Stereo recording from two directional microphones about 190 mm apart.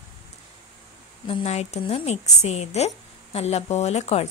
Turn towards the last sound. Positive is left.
turn(degrees=35)  # may be behind; listen again after turning